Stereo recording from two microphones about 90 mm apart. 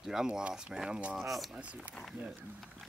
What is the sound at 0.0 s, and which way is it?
Speech, 5° right (ahead or behind).